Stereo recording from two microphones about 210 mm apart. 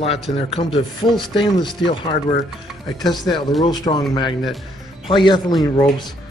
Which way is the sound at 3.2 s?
20° left (ahead or behind).